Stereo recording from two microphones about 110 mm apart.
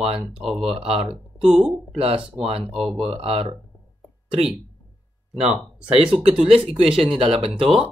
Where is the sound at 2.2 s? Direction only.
10° right (ahead or behind).